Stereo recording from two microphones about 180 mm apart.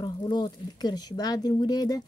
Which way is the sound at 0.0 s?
25° left (ahead or behind).